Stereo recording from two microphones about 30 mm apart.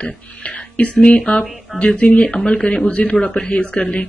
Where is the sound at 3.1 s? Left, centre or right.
Left.